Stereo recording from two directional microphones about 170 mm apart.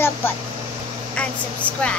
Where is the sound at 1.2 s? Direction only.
5° left (ahead or behind).